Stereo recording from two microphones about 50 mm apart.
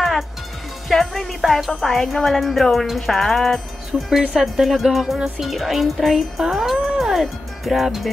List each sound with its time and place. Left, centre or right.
0.8 s music: centre
1.8 s speech: centre